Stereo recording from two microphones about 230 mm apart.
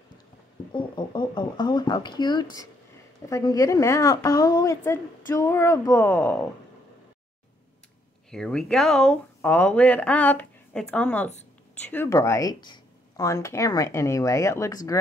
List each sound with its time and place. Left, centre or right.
0.7 s a woman's voice: left
8.3 s a woman's voice: centre